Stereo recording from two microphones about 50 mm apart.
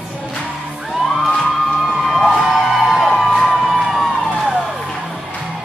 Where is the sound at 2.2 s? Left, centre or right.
Centre.